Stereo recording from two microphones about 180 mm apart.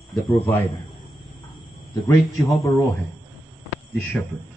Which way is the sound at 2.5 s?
Centre (ahead or behind).